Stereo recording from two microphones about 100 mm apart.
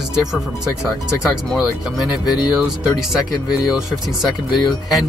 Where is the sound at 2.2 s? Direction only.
45° left (ahead or behind).